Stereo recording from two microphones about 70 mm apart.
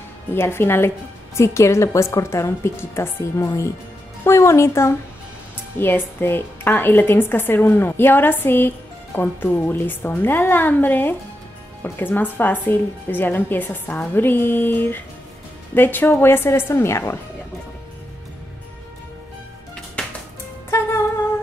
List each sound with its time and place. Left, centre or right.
0.3 s a woman's voice: left
5.8 s a woman's voice: left